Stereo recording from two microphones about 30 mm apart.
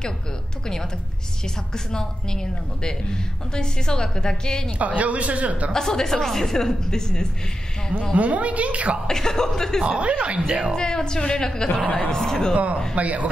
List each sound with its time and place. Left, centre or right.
1.9 s a woman's voice: left
4.7 s speech: right
5.7 s a woman's voice: centre
8.1 s a woman's voice: right
9.0 s a woman's voice: centre
9.8 s speech: right
10.7 s a woman's voice: left
12.9 s speech: right